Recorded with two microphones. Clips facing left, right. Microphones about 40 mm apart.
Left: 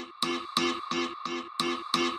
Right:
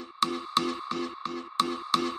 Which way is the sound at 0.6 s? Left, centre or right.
Left.